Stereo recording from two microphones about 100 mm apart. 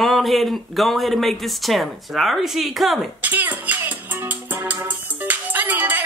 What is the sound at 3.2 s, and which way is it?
Music, 15° right (ahead or behind).